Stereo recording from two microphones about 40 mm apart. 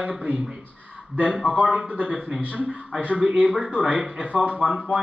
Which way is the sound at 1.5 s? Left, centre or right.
Centre.